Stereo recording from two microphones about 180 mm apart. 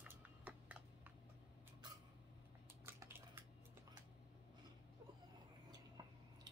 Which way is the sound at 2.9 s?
15° right (ahead or behind).